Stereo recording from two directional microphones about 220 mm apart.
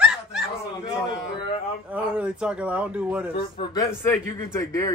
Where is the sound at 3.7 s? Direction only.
15° left (ahead or behind).